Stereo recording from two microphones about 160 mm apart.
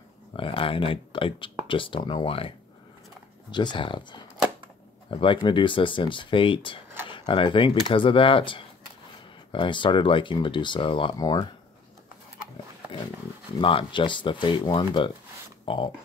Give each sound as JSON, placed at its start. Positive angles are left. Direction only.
{"t": 0.4, "sound": "speech", "side_deg": 35}
{"t": 3.5, "sound": "speech", "side_deg": 30}
{"t": 13.6, "sound": "speech", "side_deg": 30}